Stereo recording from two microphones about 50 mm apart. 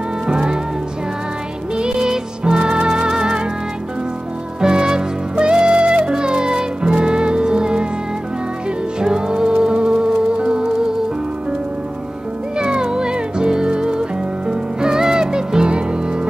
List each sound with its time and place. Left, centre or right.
0.3 s music: centre
1.8 s music: centre
4.6 s music: centre
9.0 s music: centre
12.5 s music: centre